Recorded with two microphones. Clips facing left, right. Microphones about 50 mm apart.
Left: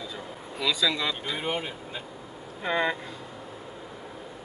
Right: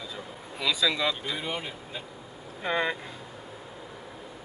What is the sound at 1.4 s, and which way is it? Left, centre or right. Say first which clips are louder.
Speech: left 3 dB; left.